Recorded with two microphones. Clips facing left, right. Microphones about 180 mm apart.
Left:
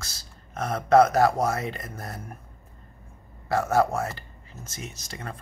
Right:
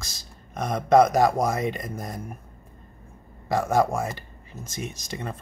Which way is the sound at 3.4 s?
15° right (ahead or behind).